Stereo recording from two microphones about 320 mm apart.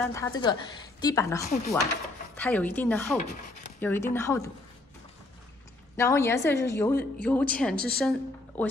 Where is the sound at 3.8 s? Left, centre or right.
Centre.